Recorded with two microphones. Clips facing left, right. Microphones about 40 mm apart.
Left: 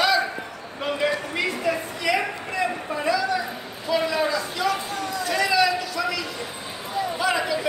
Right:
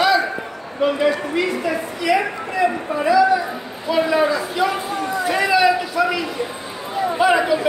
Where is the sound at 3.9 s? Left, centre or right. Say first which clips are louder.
Right 5 dB; right.